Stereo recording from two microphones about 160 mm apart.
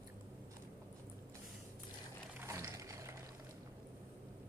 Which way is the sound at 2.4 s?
15° right (ahead or behind).